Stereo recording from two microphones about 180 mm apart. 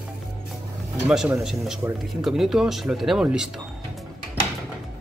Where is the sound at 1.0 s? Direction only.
5° right (ahead or behind).